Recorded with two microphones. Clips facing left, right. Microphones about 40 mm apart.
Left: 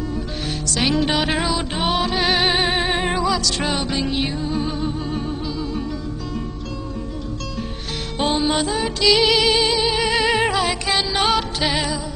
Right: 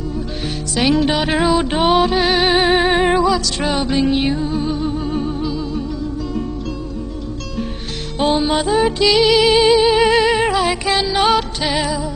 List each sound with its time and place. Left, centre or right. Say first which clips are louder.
0.7 s music: right 4 dB; centre
1.4 s music: right 7 dB; centre
8.2 s music: right 4 dB; centre
9.1 s music: right 3 dB; centre
10.2 s music: right 3 dB; centre